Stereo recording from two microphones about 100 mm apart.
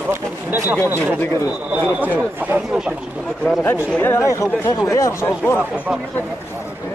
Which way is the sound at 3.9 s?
20° left (ahead or behind).